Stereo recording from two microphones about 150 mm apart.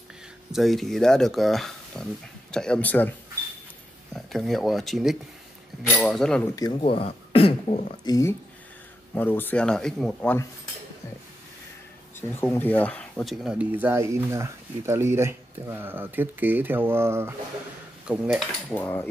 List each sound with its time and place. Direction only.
0.5 s speech: centre (ahead or behind)
6.5 s speech: 25° left (ahead or behind)
6.8 s speech: 40° left (ahead or behind)
8.0 s speech: 20° left (ahead or behind); by 10.4 s 5° left (ahead or behind)
12.2 s speech: 15° left (ahead or behind); by 17.3 s 15° right (ahead or behind)
18.0 s speech: 5° right (ahead or behind)
18.4 s speech: 10° left (ahead or behind)